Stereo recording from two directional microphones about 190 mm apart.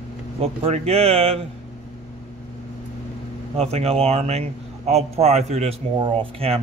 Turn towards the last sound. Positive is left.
turn(degrees=-30)  # may be behind; listen again after turning